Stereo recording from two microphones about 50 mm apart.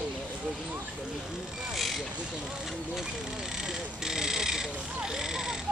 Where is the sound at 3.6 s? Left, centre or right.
Centre.